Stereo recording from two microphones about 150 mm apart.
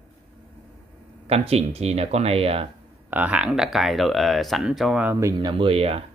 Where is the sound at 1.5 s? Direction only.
45° right (ahead or behind).